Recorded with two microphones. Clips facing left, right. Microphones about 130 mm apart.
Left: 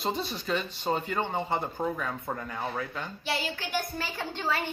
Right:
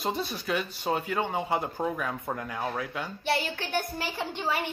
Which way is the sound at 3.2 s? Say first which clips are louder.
Right 4 dB; 60° right (ahead or behind).